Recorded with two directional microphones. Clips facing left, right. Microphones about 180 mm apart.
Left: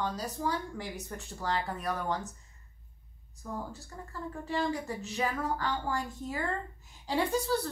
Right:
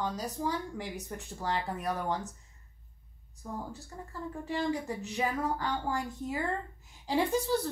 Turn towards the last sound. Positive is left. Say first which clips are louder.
# right 1 dB
turn(degrees=-20)  # may be behind; listen again after turning